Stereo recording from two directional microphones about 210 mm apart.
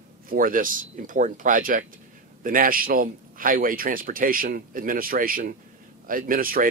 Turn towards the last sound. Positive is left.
turn(degrees=-45)  # may be behind; listen again after turning